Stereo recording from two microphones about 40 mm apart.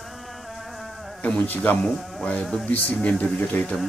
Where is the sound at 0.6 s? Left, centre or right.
Centre.